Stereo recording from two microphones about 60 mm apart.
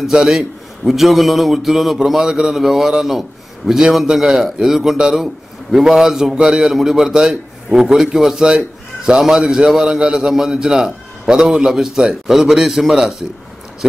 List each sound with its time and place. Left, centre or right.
0.0 s a man's voice: centre